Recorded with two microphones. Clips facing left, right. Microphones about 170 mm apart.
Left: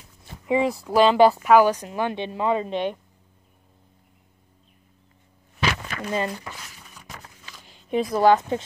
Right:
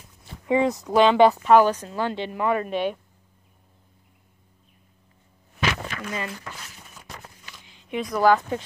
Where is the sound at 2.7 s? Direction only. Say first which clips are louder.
Even; 10° right (ahead or behind).